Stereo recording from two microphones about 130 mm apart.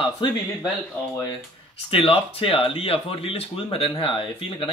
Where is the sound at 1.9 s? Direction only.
45° left (ahead or behind).